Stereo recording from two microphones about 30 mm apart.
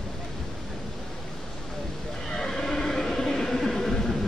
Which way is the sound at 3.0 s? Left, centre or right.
Centre.